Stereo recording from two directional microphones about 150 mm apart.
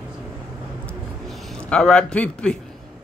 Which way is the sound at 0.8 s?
Centre (ahead or behind).